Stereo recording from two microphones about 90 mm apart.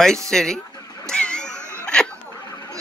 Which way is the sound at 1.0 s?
10° left (ahead or behind).